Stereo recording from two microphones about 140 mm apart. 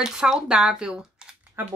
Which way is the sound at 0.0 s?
5° right (ahead or behind).